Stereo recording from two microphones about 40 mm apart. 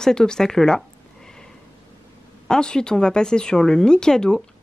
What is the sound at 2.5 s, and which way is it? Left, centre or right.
Speech, left.